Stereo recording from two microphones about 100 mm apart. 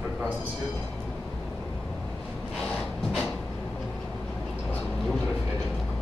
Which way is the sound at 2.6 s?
5° left (ahead or behind).